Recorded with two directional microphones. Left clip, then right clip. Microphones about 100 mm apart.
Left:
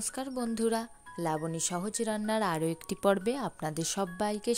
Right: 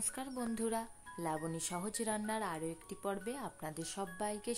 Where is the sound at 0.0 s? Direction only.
65° left (ahead or behind); by 1.4 s 85° left.